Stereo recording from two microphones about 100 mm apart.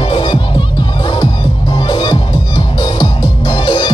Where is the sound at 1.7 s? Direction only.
50° left (ahead or behind).